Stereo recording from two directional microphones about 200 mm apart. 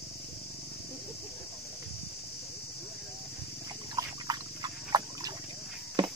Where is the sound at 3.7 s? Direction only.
20° right (ahead or behind).